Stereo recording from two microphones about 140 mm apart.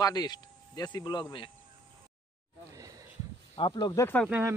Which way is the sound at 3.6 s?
35° left (ahead or behind).